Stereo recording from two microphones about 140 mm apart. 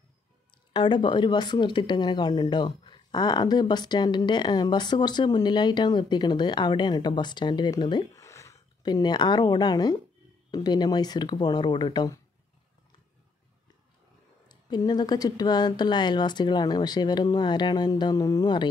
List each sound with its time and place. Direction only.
0.7 s speech: 35° left (ahead or behind)
14.5 s speech: 30° left (ahead or behind)